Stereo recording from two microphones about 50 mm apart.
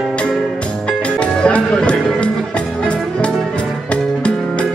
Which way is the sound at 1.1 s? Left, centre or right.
Left.